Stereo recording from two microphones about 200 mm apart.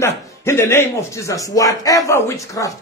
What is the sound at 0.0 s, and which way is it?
Speech, 15° left (ahead or behind).